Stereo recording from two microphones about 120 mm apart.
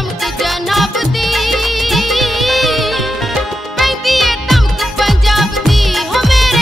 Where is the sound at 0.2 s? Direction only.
Centre (ahead or behind).